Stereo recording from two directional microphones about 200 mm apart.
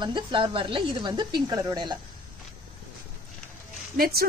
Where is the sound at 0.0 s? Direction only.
25° right (ahead or behind).